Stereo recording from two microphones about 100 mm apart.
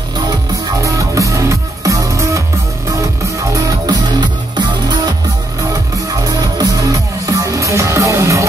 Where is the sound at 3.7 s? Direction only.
45° right (ahead or behind).